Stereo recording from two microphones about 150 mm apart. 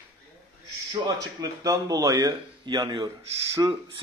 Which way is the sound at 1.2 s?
25° right (ahead or behind).